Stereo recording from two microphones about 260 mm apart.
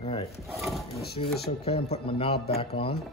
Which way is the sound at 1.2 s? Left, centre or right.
Left.